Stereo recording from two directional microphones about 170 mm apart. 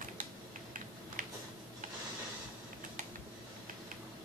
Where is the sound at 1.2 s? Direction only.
55° right (ahead or behind).